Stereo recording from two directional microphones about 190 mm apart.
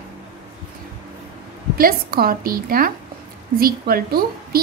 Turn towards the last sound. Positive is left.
turn(degrees=-50)  # may be behind; listen again after turning